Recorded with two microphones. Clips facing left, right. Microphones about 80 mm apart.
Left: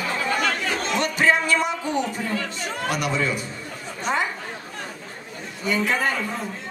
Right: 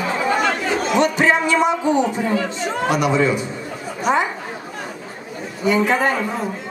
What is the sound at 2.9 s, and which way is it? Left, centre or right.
Speech, centre.